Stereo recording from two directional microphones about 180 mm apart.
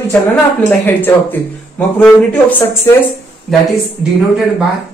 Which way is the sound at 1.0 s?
10° left (ahead or behind).